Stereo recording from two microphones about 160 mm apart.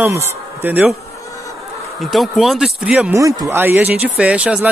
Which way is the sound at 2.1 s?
Centre (ahead or behind).